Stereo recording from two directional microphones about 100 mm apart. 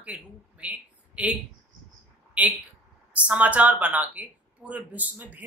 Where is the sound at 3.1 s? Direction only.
10° right (ahead or behind).